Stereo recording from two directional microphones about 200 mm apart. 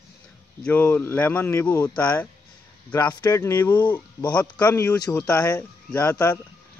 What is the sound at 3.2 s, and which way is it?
Speech, 15° left (ahead or behind).